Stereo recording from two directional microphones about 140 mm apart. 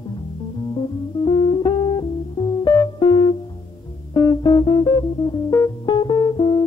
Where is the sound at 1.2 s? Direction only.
30° left (ahead or behind).